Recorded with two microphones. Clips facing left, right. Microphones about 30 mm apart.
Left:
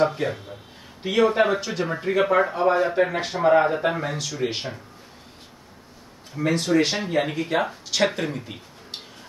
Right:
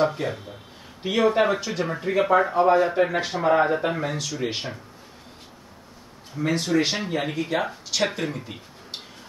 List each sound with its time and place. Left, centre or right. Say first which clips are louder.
0.0 s speech: left 1 dB; centre
6.4 s speech: left 2 dB; left
6.8 s speech: left 2 dB; centre